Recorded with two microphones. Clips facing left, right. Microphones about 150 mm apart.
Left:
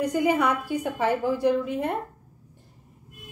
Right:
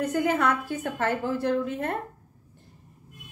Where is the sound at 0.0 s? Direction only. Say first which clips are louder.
Left 2 dB; 10° left (ahead or behind).